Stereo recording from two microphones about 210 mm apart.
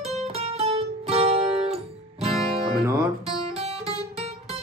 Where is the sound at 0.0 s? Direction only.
30° right (ahead or behind).